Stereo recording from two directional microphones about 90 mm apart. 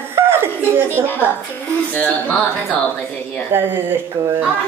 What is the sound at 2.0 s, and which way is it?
Speech, 15° left (ahead or behind).